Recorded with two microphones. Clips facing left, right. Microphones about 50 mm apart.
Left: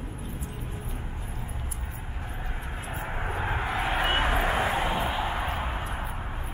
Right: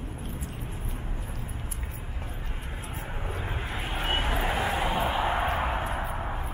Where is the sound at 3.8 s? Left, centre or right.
Left.